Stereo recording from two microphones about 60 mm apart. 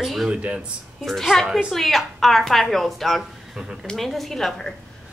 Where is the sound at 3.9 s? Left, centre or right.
Centre.